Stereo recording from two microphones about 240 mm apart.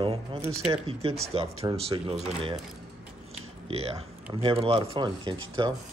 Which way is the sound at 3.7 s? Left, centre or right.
Right.